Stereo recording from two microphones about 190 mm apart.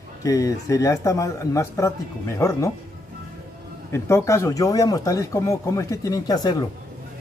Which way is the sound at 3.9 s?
15° left (ahead or behind).